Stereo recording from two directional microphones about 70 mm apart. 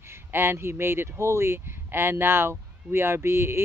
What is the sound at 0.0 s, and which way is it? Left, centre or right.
Speech, right.